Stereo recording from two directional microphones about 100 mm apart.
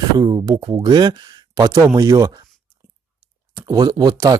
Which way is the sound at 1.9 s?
30° right (ahead or behind).